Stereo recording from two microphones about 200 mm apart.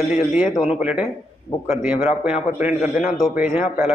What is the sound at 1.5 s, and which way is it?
Speech, 10° left (ahead or behind).